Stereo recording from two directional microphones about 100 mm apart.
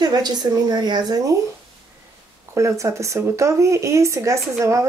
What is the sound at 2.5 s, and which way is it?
Speech, 30° right (ahead or behind).